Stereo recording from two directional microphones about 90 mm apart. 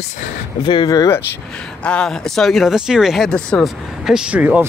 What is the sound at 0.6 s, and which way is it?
Speech, 60° left (ahead or behind).